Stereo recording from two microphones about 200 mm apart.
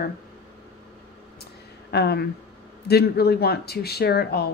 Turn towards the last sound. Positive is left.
turn(degrees=50)  # may be behind; listen again after turning